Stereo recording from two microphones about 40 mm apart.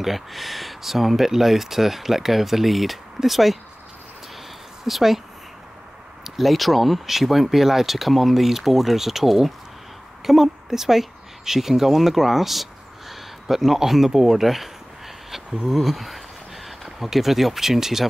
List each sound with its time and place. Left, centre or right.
0.0 s speech: centre
4.8 s speech: centre
6.2 s speech: centre
15.3 s speech: centre
15.7 s speech: centre